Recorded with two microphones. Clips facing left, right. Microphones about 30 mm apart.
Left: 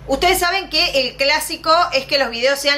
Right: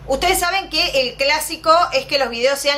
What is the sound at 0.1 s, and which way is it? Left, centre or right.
A woman's voice, centre.